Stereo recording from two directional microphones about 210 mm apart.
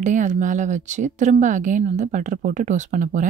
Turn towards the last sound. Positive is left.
turn(degrees=-40)  # may be behind; listen again after turning